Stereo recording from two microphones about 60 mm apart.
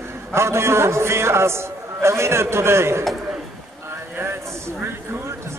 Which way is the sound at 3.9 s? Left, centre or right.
Right.